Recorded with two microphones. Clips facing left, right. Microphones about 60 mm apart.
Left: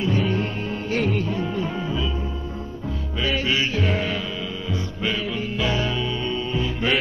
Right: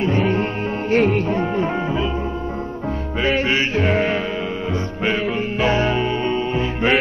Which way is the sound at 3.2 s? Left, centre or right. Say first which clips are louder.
Right 4 dB; right.